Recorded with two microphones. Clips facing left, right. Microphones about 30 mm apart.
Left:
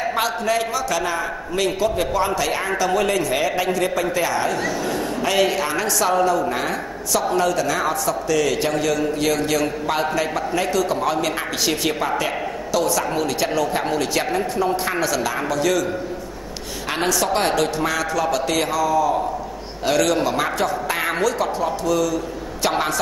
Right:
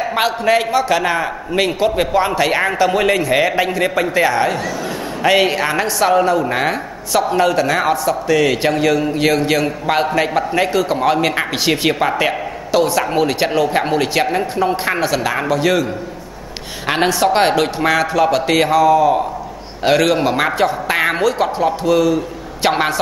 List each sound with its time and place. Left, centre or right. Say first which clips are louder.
0.1 s a man's voice: right 9 dB; right